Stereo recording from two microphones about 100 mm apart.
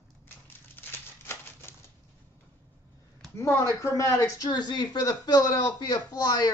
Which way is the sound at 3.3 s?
25° left (ahead or behind).